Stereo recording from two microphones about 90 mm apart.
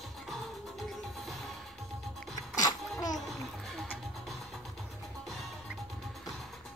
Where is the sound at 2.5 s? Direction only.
45° left (ahead or behind).